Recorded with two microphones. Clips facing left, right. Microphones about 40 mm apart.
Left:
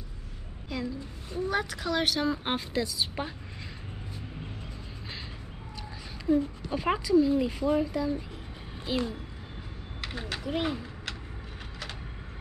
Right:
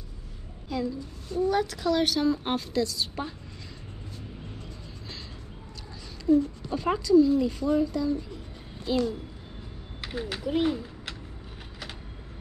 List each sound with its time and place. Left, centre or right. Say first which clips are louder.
0.7 s speech: right 4 dB; centre
1.3 s a woman's voice: right 4 dB; centre
6.2 s a child's voice: right 4 dB; centre
10.0 s speech: right 3 dB; centre